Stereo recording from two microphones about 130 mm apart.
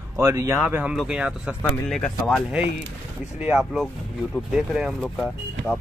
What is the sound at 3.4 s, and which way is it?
Speech, 5° right (ahead or behind).